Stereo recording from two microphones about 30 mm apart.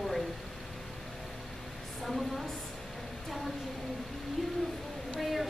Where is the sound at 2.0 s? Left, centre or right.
Centre.